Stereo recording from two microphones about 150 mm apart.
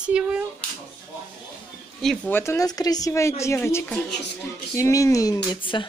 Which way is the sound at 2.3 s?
15° left (ahead or behind).